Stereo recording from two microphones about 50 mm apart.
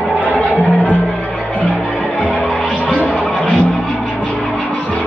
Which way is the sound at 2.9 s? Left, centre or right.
Left.